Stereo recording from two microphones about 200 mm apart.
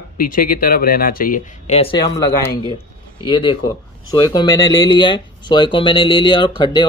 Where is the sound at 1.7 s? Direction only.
25° left (ahead or behind).